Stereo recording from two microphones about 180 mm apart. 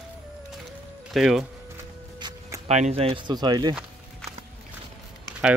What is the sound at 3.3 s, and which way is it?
Speech, 20° right (ahead or behind).